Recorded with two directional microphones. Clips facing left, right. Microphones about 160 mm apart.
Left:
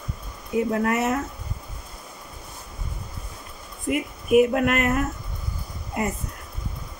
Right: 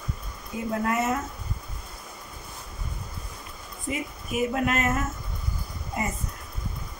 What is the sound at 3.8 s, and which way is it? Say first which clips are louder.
Speech: left 8 dB; 65° left (ahead or behind).